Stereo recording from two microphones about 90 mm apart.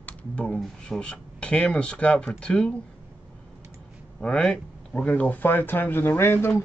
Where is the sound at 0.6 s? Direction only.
10° left (ahead or behind).